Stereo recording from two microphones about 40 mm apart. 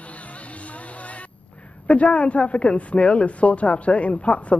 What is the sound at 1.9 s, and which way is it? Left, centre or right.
Speech, left.